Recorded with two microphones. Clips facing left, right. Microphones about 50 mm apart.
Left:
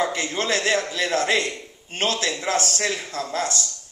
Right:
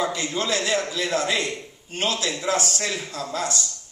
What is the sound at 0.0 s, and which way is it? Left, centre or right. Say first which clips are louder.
A man's voice: left 1 dB; left.